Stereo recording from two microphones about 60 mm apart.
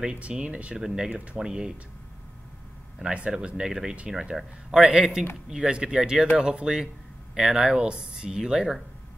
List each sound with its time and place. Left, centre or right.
0.0 s speech: right
0.7 s speech: centre
3.1 s speech: centre